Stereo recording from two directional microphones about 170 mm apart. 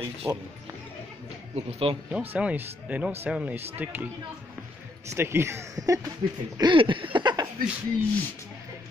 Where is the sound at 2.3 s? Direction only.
10° right (ahead or behind).